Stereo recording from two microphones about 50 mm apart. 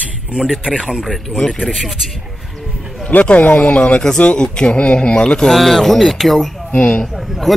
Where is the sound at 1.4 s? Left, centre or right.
Centre.